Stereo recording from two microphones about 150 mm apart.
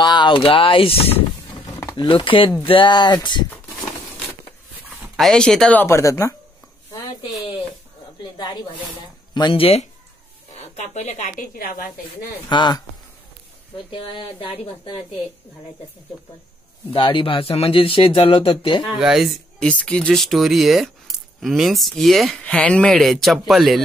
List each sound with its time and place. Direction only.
0.0 s speech: 30° left (ahead or behind)
1.8 s a sound: 20° left (ahead or behind)
2.0 s speech: 35° left (ahead or behind)
5.1 s speech: centre (ahead or behind); by 6.3 s 20° left (ahead or behind)
6.9 s a sound: 25° left (ahead or behind)
9.3 s a woman's voice: 30° left (ahead or behind); by 11.8 s 70° left (ahead or behind)
12.4 s speech: 30° left (ahead or behind)
13.8 s speech: 35° left (ahead or behind)
16.9 s speech: 35° left (ahead or behind)
18.9 s speech: 5° right (ahead or behind)